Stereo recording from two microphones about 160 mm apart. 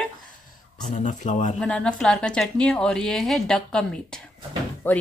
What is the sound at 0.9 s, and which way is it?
Speech, 50° left (ahead or behind).